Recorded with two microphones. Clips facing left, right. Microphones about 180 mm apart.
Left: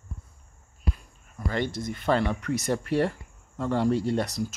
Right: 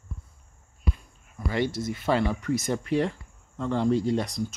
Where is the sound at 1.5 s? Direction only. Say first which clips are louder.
Right 2 dB; 5° right (ahead or behind).